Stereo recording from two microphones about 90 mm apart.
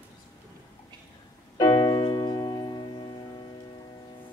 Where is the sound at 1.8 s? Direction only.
90° left; by 2.8 s 55° left (ahead or behind).